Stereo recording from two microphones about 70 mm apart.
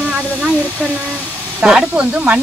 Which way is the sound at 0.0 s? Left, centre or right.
Centre.